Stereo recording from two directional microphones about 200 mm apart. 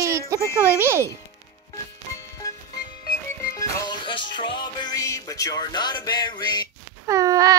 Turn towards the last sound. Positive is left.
turn(degrees=-15)  # may be behind; listen again after turning